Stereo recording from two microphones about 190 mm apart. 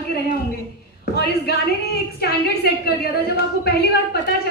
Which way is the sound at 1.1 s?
60° left (ahead or behind).